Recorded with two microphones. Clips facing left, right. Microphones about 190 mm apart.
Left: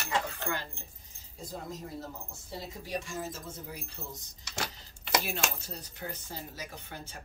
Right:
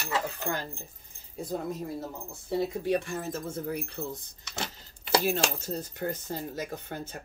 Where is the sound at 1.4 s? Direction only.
60° right (ahead or behind).